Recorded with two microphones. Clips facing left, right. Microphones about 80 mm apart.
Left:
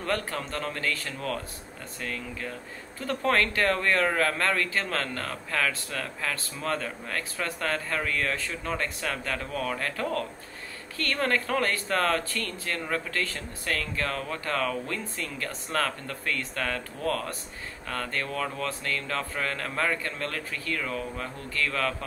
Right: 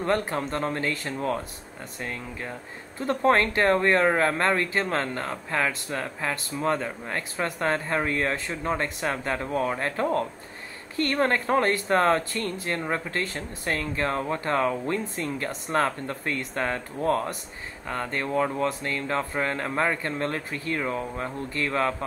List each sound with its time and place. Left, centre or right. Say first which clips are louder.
0.0 s speech: right 5 dB; right